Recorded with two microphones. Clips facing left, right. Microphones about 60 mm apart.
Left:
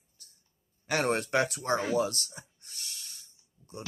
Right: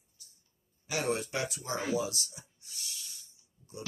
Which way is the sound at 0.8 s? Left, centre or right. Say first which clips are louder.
Left 4 dB; left.